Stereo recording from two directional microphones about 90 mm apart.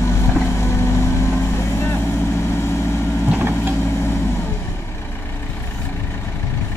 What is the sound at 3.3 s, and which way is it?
Vehicle, 20° right (ahead or behind).